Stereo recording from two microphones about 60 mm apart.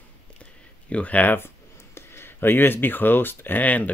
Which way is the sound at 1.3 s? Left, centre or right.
Left.